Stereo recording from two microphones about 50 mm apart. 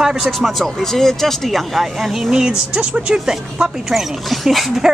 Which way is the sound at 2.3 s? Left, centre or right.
Centre.